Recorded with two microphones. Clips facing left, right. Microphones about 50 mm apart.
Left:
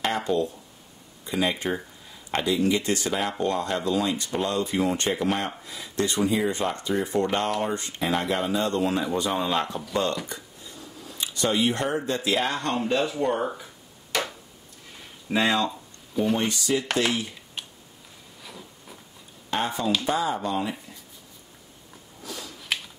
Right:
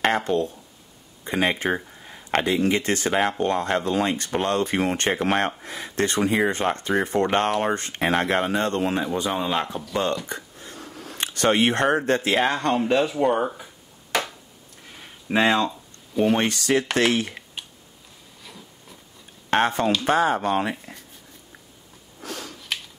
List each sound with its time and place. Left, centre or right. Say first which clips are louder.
0.0 s speech: right 3 dB; right
9.0 s speech: right 1 dB; centre
10.2 s a sound: right 4 dB; right
12.1 s speech: right 4 dB; right
12.4 s speech: right 4 dB; right
15.2 s speech: right 3 dB; right
16.3 s speech: right 4 dB; right
18.4 s a sound: left 1 dB; centre
19.5 s speech: right 5 dB; right
22.2 s finger snapping: right 3 dB; right